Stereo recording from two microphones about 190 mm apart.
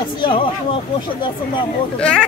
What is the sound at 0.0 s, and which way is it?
Speech, 25° left (ahead or behind).